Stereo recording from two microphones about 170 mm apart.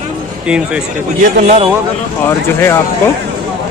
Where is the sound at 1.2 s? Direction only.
50° right (ahead or behind).